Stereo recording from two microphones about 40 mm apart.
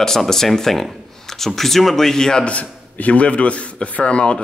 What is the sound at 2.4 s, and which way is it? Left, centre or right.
A man's voice, left.